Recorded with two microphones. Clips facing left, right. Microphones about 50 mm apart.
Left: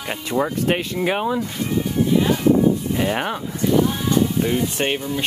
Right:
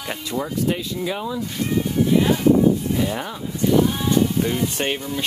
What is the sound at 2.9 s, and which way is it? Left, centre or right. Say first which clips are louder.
Speech: left 3 dB; left.